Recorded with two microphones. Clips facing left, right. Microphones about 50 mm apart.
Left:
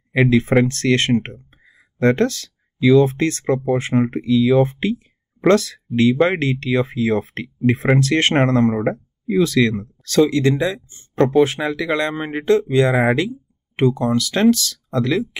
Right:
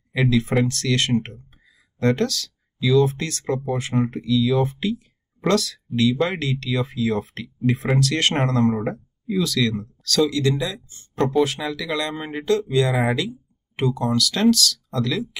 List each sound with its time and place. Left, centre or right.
0.1 s speech: left